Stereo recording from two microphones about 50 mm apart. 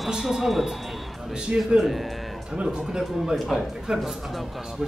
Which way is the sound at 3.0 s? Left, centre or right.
Centre.